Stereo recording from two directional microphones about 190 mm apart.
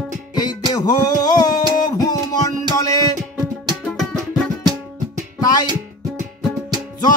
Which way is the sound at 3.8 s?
5° left (ahead or behind).